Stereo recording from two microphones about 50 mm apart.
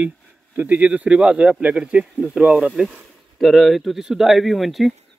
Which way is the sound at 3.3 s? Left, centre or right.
Centre.